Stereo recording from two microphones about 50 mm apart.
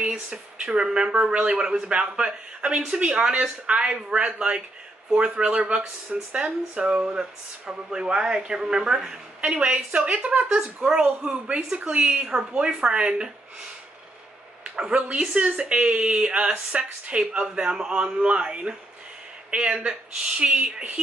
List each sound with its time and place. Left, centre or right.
0.7 s speech: centre
11.1 s speech: right
14.8 s speech: centre